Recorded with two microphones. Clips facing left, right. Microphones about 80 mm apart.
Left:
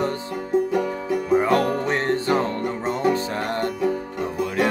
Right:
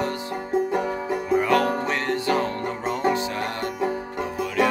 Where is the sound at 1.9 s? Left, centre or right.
Left.